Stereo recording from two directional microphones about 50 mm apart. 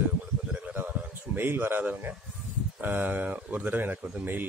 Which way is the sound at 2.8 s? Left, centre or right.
Right.